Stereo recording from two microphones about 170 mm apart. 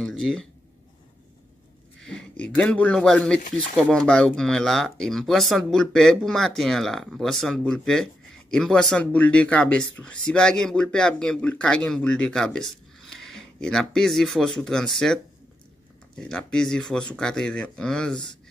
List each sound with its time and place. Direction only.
0.0 s speech: 5° left (ahead or behind)
2.0 s a man's voice: 5° left (ahead or behind)
16.2 s speech: 5° left (ahead or behind)